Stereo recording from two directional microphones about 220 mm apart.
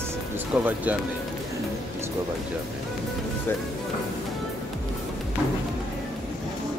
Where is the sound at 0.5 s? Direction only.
5° right (ahead or behind).